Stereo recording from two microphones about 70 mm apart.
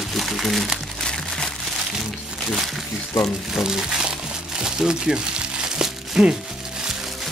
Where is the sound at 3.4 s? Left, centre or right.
Centre.